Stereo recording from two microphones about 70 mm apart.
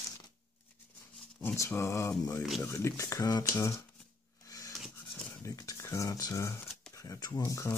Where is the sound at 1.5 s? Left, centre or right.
Left.